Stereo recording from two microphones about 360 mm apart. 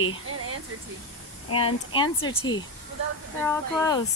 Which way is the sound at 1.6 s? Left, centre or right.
Centre.